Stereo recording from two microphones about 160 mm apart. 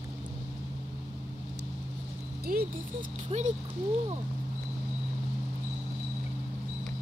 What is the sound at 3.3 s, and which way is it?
Speech, 45° right (ahead or behind).